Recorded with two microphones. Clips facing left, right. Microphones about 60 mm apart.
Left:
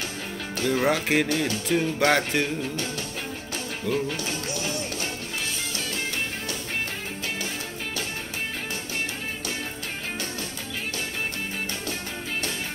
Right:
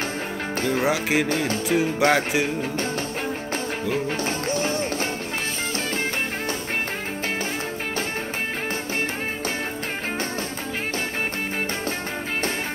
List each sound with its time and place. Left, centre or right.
0.6 s speech: right
0.8 s speech: centre
1.7 s speech: centre
3.9 s speech: right